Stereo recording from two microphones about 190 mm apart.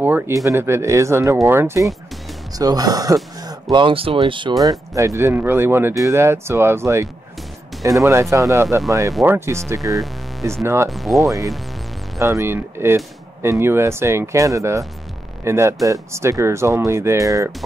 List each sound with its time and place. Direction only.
0.0 s speech: 15° right (ahead or behind)
10.9 s speech: centre (ahead or behind)
12.2 s speech: 15° right (ahead or behind)